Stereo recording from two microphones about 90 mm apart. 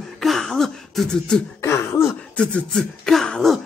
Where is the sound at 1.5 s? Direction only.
30° left (ahead or behind).